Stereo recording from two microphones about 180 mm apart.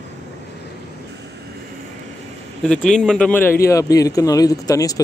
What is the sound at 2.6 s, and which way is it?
Speech, 5° left (ahead or behind).